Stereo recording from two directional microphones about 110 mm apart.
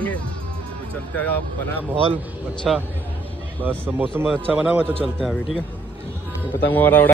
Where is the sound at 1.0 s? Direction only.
15° left (ahead or behind).